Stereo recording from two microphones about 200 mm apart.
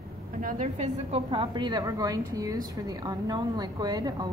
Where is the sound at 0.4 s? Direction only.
40° right (ahead or behind).